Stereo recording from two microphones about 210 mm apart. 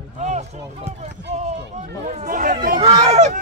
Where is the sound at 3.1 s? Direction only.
35° right (ahead or behind).